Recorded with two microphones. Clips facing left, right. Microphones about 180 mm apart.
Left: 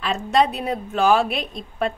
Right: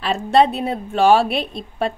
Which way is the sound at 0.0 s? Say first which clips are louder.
Right 4 dB; 30° right (ahead or behind).